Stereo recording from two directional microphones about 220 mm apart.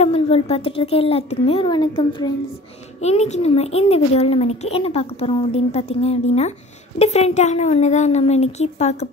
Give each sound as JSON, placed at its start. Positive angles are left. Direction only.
{"t": 0.0, "sound": "a child's voice", "side_deg": 25}